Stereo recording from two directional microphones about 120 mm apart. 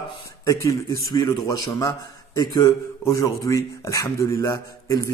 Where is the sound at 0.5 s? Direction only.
30° left (ahead or behind).